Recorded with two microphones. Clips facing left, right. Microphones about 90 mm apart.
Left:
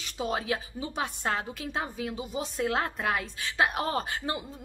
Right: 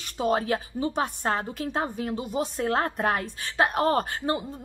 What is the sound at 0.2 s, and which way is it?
Speech, 45° right (ahead or behind).